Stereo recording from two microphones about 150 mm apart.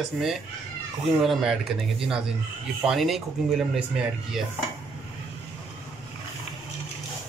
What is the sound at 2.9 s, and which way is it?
Speech, centre (ahead or behind).